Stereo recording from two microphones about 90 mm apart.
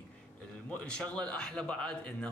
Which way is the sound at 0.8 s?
10° left (ahead or behind).